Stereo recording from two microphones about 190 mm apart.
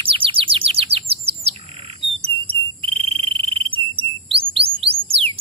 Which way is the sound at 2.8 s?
30° right (ahead or behind).